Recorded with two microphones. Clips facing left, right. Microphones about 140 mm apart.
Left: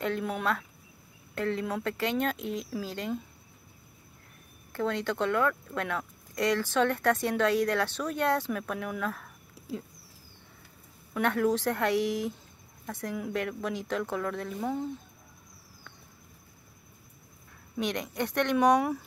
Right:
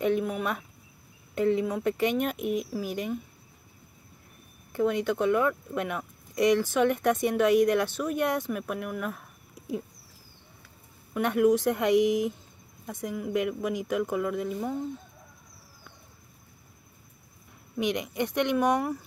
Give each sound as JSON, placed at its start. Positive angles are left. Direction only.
{"t": 0.2, "sound": "speech", "side_deg": -5}
{"t": 1.3, "sound": "speech", "side_deg": -15}
{"t": 4.7, "sound": "speech", "side_deg": -15}
{"t": 11.1, "sound": "speech", "side_deg": -15}
{"t": 17.7, "sound": "speech", "side_deg": -15}